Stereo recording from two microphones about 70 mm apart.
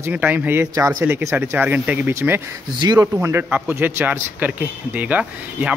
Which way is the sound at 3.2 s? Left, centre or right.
Right.